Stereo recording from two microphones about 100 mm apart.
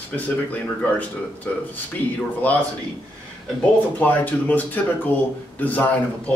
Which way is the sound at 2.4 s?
15° left (ahead or behind).